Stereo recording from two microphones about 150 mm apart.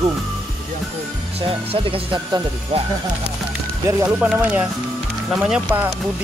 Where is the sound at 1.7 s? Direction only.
35° right (ahead or behind).